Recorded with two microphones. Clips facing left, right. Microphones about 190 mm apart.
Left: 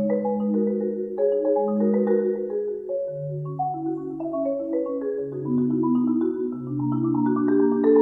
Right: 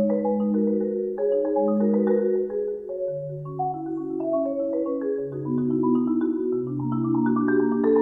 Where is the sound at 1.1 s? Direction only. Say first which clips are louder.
Left 3 dB; 5° left (ahead or behind).